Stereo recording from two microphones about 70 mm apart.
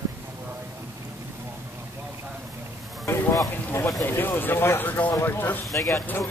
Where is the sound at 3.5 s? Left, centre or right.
Left.